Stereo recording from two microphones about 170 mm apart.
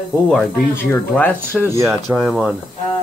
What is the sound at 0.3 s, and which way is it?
Speech, 10° left (ahead or behind).